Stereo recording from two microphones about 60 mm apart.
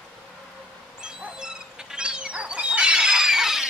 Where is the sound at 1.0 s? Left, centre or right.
Centre.